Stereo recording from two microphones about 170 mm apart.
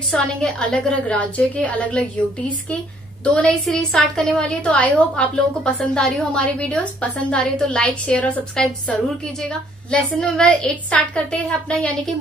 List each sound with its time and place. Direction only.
0.1 s a woman's voice: 5° left (ahead or behind)
3.3 s a woman's voice: 5° left (ahead or behind)